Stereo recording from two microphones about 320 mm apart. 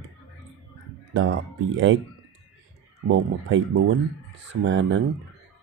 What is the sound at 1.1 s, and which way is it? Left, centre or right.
Speech, right.